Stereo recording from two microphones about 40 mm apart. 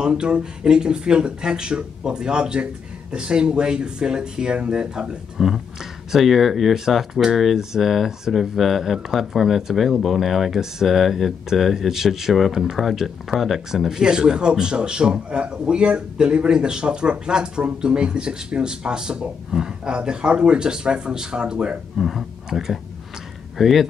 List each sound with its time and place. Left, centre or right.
0.0 s speech: right
5.4 s speech: centre
21.9 s speech: centre